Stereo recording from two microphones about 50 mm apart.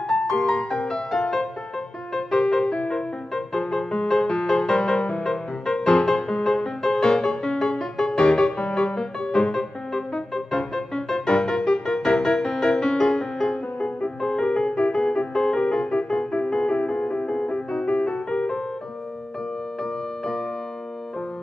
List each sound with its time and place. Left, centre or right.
0.1 s music: centre
13.7 s music: left
14.2 s music: centre
19.8 s music: centre